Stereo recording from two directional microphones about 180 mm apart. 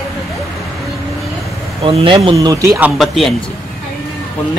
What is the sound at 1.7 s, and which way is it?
Speech, 30° right (ahead or behind).